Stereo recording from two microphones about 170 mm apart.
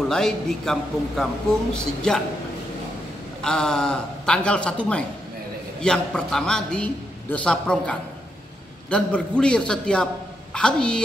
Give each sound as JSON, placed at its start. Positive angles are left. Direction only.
{"t": 0.1, "sound": "a woman's voice", "side_deg": 5}
{"t": 3.4, "sound": "a woman's voice", "side_deg": 5}